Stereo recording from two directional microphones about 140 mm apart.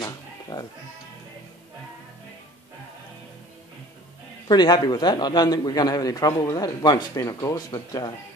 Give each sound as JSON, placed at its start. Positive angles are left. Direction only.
{"t": 0.0, "sound": "bleat", "side_deg": 25}
{"t": 4.5, "sound": "a man's voice", "side_deg": 30}